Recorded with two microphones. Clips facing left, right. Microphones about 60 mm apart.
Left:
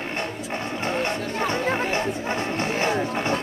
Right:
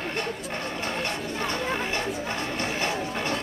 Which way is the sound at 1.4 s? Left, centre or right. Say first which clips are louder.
Left 5 dB; left.